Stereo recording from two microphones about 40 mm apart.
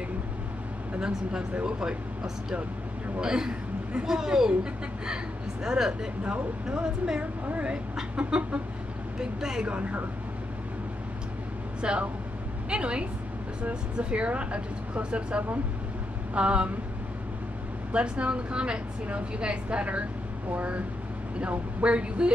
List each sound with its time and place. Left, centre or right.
0.9 s speech: right
1.5 s speech: right
3.2 s speech: centre
9.2 s speech: centre
9.7 s speech: right
11.8 s a woman's voice: right
17.9 s speech: right
21.4 s speech: right